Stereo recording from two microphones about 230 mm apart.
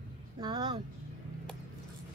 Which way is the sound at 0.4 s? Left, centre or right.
Centre.